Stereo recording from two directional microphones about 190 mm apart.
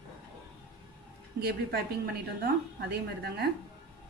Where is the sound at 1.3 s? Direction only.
55° right (ahead or behind).